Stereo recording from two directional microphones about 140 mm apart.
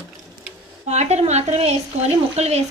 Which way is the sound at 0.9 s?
50° right (ahead or behind).